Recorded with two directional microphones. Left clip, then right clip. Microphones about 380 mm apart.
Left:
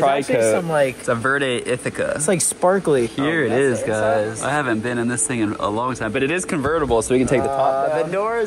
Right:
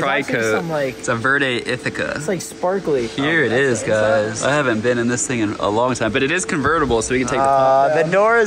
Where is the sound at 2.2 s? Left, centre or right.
Left.